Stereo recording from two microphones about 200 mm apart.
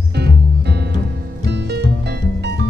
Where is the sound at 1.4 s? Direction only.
60° right (ahead or behind).